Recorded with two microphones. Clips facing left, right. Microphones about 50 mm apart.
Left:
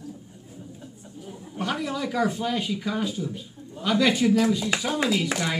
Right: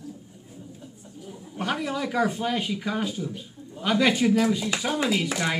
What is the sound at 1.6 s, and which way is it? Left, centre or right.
Speech, centre.